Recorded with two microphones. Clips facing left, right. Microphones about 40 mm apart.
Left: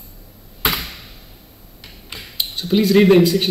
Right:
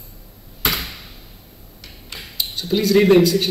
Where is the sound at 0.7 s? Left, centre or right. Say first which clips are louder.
Even; centre.